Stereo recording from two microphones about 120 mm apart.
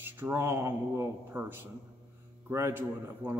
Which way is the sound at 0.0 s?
20° right (ahead or behind).